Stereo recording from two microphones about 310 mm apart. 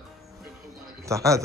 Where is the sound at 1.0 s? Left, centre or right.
Centre.